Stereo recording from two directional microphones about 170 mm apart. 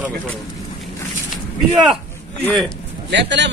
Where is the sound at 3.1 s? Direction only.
90° right.